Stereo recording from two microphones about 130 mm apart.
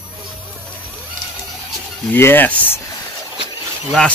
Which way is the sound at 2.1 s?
15° left (ahead or behind).